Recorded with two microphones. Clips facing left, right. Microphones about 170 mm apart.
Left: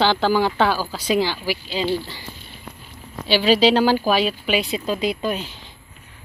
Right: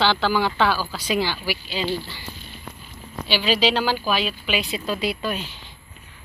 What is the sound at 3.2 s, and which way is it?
Speech, 35° left (ahead or behind).